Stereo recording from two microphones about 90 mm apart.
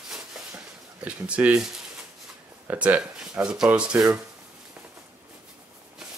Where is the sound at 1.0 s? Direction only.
15° right (ahead or behind).